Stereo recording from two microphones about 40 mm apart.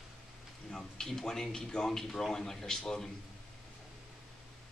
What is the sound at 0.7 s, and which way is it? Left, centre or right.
Speech, centre.